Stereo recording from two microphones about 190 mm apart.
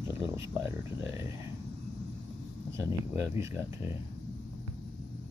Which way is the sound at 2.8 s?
15° right (ahead or behind).